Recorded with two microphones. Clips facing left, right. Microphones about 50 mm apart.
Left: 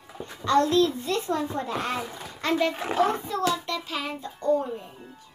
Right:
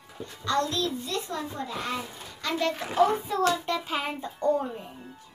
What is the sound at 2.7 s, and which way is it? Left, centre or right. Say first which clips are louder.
Speech: left 3 dB; left.